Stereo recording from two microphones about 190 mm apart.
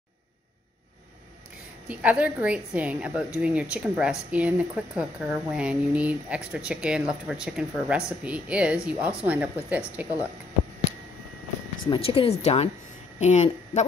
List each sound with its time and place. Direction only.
1.9 s a woman's voice: 5° right (ahead or behind)
11.9 s speech: 30° left (ahead or behind)